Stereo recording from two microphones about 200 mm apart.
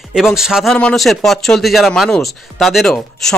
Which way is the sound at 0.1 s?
Centre (ahead or behind).